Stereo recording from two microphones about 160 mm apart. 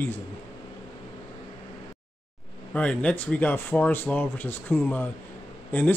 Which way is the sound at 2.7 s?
10° left (ahead or behind).